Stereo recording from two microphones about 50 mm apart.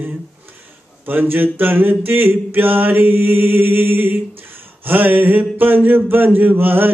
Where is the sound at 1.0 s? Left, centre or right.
Right.